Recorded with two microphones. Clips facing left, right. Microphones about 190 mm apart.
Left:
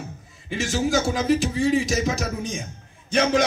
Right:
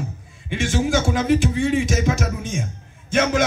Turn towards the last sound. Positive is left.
turn(degrees=35)  # may be behind; listen again after turning